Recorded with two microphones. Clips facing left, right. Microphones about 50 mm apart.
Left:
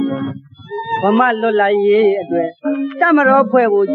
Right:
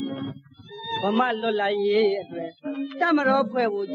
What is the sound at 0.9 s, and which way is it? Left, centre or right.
A man's voice, left.